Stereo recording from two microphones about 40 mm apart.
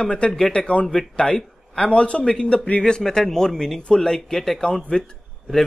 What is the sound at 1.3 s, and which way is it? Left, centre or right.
A man's voice, left.